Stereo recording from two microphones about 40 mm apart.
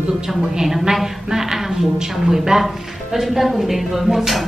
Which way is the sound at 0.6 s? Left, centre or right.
Centre.